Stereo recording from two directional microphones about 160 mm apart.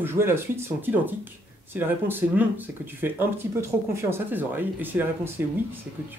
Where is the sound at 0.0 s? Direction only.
15° right (ahead or behind).